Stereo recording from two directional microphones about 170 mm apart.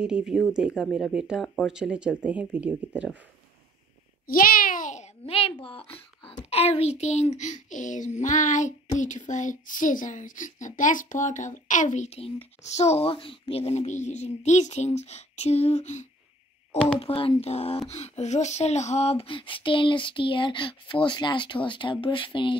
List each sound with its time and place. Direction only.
0.0 s speech: 5° right (ahead or behind)
4.3 s a child's voice: 55° left (ahead or behind); by 22.6 s 30° left (ahead or behind)